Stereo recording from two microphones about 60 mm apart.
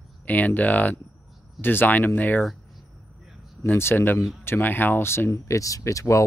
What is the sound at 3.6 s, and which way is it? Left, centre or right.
Speech, left.